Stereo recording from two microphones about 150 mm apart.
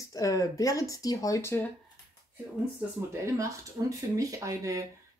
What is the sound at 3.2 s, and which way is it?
Speech, 20° right (ahead or behind).